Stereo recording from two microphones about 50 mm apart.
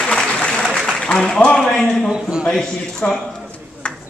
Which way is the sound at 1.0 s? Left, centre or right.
Centre.